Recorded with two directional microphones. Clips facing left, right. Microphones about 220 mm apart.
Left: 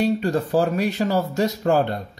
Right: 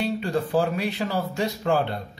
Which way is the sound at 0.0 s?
40° left (ahead or behind).